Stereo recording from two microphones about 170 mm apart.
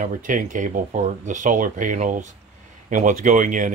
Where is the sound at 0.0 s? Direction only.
50° right (ahead or behind).